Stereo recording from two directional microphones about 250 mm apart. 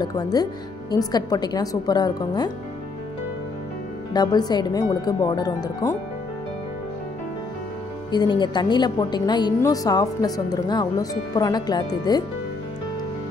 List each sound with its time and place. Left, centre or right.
0.0 s a woman's voice: centre
4.1 s a woman's voice: centre
8.1 s a woman's voice: centre